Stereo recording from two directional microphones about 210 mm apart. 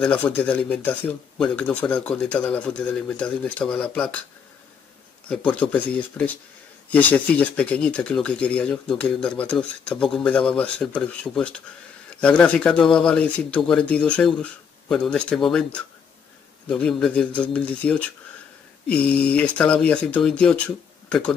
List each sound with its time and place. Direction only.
0.0 s speech: 5° left (ahead or behind)
5.5 s speech: 5° left (ahead or behind)